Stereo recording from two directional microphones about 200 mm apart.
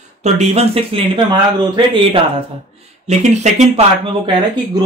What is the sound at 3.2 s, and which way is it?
Speech, 35° right (ahead or behind).